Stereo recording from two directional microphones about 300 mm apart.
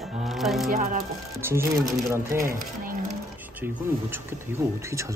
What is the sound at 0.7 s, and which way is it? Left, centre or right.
Speech, right.